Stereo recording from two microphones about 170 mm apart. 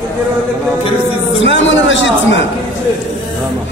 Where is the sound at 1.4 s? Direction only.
90° left.